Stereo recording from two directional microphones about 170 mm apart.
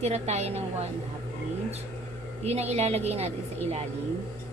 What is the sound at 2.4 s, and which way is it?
A woman's voice, 40° right (ahead or behind).